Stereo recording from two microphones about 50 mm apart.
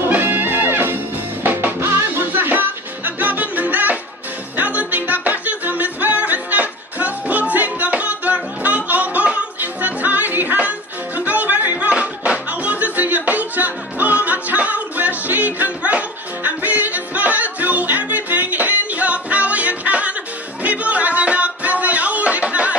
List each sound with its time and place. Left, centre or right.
0.0 s music: right
16.4 s yodeling: right
20.6 s music: right